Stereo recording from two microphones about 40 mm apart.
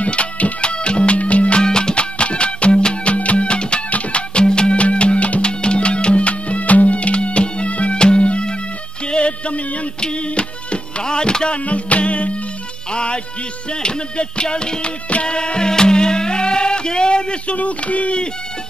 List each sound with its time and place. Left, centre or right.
0.0 s music: left
1.6 s music: centre
17.6 s a sound: left